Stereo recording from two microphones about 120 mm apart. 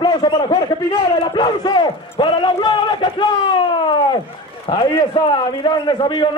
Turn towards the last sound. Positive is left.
turn(degrees=35)  # may be behind; listen again after turning